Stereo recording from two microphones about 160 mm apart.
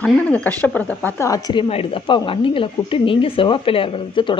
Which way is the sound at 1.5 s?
35° left (ahead or behind).